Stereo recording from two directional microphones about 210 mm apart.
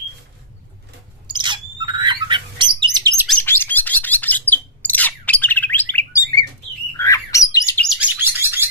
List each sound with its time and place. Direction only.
1.2 s bird: 20° right (ahead or behind)
3.3 s chirp: 10° left (ahead or behind)
7.0 s bird: 15° left (ahead or behind)
7.8 s chirp: 5° right (ahead or behind)